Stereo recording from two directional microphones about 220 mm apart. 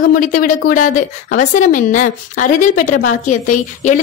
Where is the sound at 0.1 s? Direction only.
40° left (ahead or behind).